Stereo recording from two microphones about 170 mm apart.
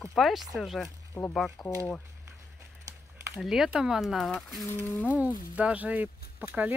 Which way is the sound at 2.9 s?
20° right (ahead or behind).